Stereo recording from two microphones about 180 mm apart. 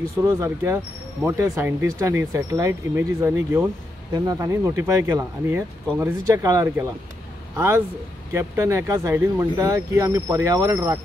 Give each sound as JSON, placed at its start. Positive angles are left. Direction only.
{"t": 0.0, "sound": "speech", "side_deg": -15}